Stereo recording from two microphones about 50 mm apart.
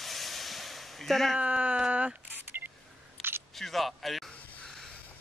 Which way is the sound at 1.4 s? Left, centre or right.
Right.